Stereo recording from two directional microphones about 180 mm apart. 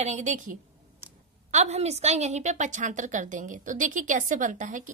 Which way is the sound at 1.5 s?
40° right (ahead or behind).